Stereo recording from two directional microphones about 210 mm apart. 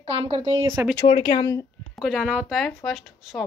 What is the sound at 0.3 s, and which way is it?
Speech, 20° right (ahead or behind).